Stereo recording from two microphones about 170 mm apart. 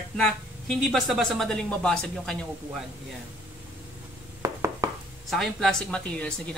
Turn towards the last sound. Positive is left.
turn(degrees=5)  # may be behind; listen again after turning